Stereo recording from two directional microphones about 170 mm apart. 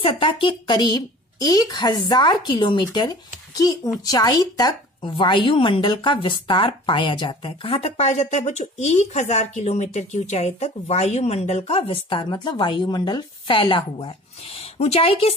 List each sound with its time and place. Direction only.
0.0 s a woman's voice: 30° left (ahead or behind)